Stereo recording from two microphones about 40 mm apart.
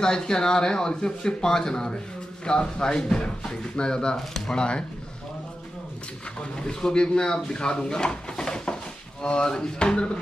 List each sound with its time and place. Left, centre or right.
0.0 s speech: centre
4.2 s speech: centre
4.6 s speech: left
6.5 s speech: left